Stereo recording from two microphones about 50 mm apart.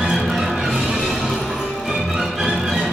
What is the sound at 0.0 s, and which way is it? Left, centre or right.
Music, centre.